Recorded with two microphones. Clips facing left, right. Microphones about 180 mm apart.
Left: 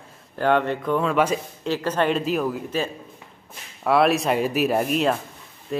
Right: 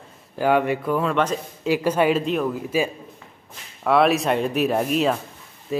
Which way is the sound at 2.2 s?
Centre (ahead or behind).